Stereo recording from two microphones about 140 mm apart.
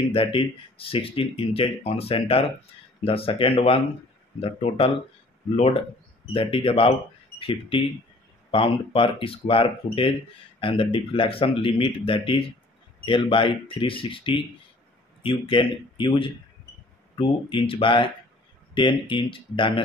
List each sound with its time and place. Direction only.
0.1 s speech: 40° left (ahead or behind)
6.2 s speech: 40° left (ahead or behind)